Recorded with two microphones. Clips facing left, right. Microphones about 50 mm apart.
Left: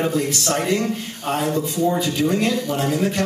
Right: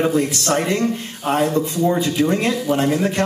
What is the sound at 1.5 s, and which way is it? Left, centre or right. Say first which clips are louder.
A man's voice: right 2 dB; centre.